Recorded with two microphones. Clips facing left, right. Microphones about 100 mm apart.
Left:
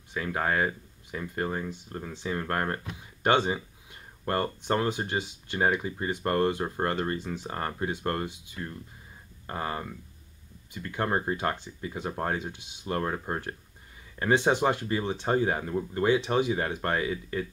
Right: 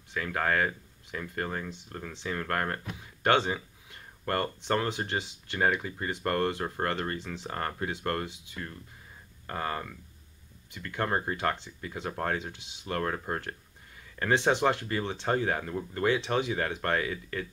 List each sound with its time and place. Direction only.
0.1 s speech: 15° left (ahead or behind)
3.3 s a sound: 15° left (ahead or behind)
4.6 s speech: 15° left (ahead or behind)